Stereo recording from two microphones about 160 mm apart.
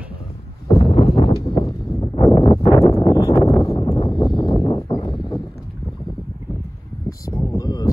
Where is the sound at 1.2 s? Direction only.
35° left (ahead or behind).